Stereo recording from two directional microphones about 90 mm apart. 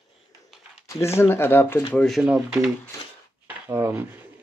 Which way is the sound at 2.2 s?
10° right (ahead or behind).